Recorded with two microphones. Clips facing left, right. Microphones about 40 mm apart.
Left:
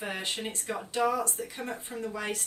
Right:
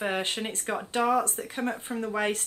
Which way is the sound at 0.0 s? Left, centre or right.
Right.